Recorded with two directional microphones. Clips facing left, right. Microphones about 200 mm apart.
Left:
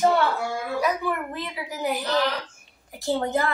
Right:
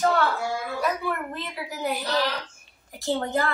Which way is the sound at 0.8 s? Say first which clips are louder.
Left 3 dB; 10° left (ahead or behind).